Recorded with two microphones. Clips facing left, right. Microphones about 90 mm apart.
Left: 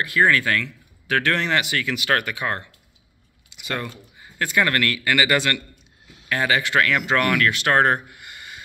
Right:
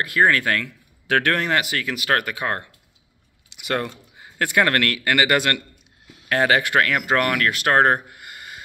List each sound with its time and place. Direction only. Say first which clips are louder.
0.2 s speech: even; 45° right (ahead or behind)
1.0 s speech: right 2 dB; 60° right (ahead or behind)
1.3 s speech: right 1 dB; 40° right (ahead or behind)
3.5 s a man's voice: right 4 dB; 65° right (ahead or behind)
7.1 s speech: even; 40° right (ahead or behind)